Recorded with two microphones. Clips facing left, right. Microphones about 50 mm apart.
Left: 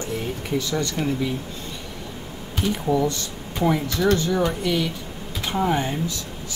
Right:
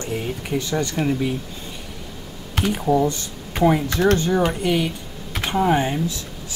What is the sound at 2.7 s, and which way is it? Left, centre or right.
Speech, right.